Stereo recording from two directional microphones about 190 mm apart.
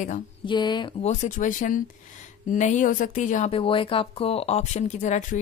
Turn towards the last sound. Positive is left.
turn(degrees=40)  # may be behind; listen again after turning